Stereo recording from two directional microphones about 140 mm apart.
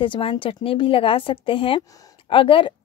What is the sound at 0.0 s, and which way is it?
A woman's voice, 35° left (ahead or behind).